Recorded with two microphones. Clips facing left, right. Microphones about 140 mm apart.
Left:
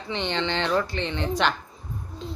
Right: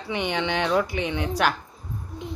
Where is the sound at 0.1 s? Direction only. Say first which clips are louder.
Right 1 dB; 10° right (ahead or behind).